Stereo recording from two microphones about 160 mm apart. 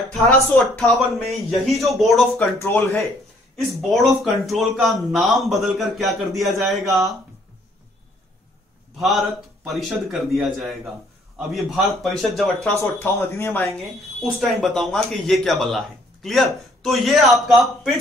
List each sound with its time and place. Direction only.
0.7 s speech: centre (ahead or behind)
2.3 s speech: 10° left (ahead or behind)
3.5 s speech: centre (ahead or behind)
9.7 s speech: centre (ahead or behind)
12.7 s speech: 15° left (ahead or behind)
14.2 s speech: centre (ahead or behind)